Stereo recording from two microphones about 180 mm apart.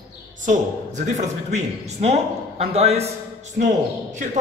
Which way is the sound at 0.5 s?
40° right (ahead or behind).